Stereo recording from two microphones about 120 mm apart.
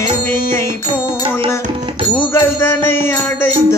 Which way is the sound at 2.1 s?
20° left (ahead or behind).